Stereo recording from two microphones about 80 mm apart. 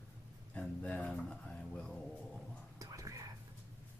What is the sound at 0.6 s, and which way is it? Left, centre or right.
Speech, centre.